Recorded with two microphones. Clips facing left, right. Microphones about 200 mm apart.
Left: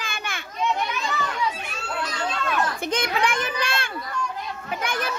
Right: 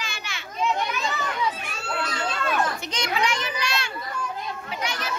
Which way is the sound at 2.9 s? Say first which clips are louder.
Left 2 dB; 55° left (ahead or behind).